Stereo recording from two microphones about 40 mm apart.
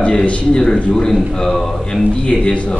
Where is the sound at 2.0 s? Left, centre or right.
Left.